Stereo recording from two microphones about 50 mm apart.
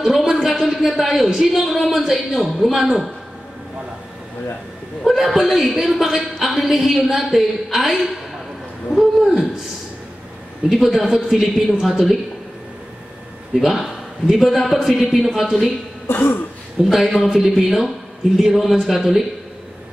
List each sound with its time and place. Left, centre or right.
0.2 s a man's voice: centre
5.0 s a man's voice: centre
10.7 s a man's voice: centre
13.6 s a man's voice: centre
16.1 s speech: left
16.9 s a man's voice: centre